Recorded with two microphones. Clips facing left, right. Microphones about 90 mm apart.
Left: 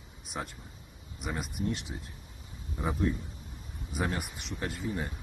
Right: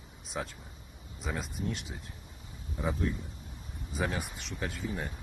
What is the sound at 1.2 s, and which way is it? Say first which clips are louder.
Speech: left 1 dB; 15° left (ahead or behind).